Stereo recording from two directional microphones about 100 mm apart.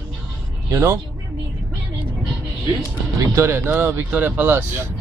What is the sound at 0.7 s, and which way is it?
Speech, 25° right (ahead or behind).